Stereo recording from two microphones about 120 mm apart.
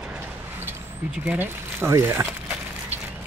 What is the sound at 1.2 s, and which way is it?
Speech, 15° right (ahead or behind).